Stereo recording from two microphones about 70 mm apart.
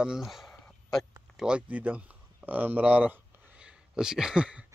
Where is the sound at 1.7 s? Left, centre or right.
Right.